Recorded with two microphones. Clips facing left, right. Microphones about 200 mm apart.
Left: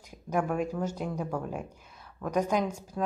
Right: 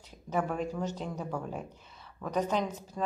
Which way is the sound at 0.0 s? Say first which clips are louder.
Left 2 dB; 10° left (ahead or behind).